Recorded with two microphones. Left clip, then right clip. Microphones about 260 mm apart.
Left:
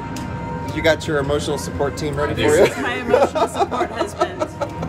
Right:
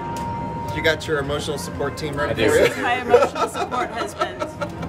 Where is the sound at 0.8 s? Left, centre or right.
Centre.